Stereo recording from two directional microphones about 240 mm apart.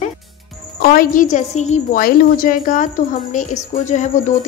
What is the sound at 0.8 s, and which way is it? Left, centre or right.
Speech, left.